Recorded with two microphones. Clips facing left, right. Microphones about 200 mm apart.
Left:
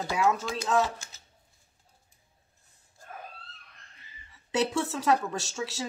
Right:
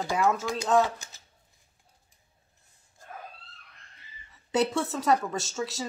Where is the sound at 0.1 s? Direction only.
Centre (ahead or behind).